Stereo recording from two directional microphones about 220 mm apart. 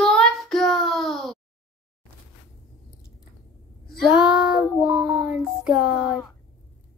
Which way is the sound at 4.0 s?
Centre (ahead or behind).